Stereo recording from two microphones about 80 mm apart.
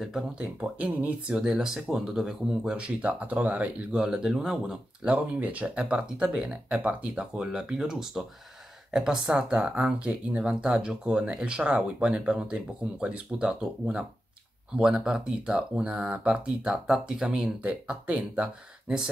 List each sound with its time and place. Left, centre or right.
0.0 s speech: centre
0.6 s speech: centre
5.1 s speech: centre
17.6 s speech: centre